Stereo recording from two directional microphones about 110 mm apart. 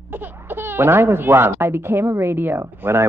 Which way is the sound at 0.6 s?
20° right (ahead or behind).